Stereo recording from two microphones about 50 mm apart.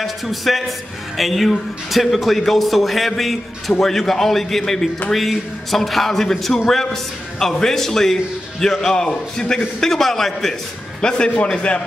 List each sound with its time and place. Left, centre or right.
0.0 s a man's voice: centre
11.0 s a man's voice: centre